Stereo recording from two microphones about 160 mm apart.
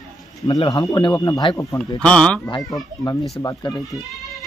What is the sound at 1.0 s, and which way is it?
Speech, 25° left (ahead or behind).